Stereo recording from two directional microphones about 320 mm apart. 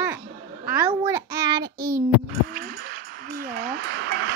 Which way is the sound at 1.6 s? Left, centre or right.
Right.